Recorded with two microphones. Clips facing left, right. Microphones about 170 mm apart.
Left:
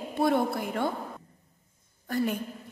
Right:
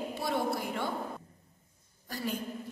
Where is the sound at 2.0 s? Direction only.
55° left (ahead or behind).